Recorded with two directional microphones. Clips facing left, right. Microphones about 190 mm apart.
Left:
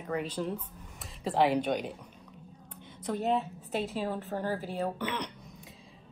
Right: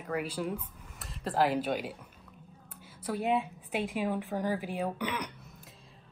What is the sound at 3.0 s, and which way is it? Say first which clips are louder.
A woman's voice: even; 10° right (ahead or behind).